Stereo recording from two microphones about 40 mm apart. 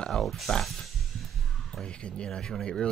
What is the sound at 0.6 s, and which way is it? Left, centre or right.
Music, centre.